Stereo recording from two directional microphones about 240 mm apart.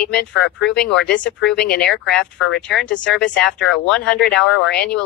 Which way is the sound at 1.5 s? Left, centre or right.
Left.